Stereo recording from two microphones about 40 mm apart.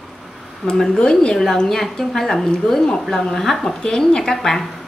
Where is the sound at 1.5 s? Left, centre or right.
Centre.